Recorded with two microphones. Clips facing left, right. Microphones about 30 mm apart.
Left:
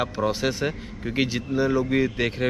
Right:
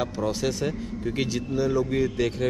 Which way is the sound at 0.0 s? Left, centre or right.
Left.